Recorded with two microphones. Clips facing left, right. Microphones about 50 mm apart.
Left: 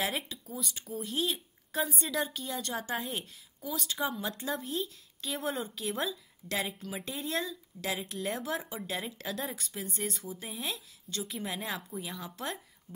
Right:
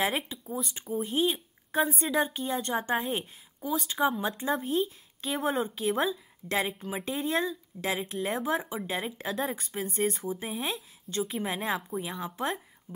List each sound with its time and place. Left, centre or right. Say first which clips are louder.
0.0 s speech: right 5 dB; right